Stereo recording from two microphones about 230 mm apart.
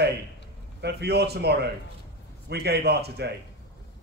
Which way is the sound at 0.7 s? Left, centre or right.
Right.